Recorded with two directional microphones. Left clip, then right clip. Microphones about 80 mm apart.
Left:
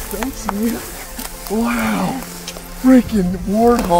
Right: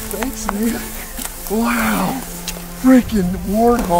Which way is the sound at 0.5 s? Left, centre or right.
Centre.